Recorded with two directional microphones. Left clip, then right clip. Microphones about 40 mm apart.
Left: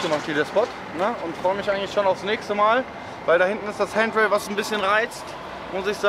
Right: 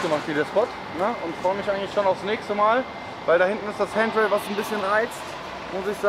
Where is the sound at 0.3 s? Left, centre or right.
Centre.